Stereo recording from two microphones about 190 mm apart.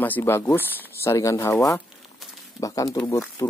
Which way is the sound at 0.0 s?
10° left (ahead or behind).